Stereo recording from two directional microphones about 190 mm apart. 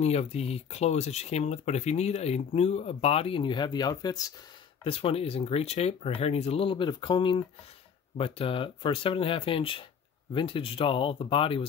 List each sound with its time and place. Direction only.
0.0 s speech: 35° left (ahead or behind)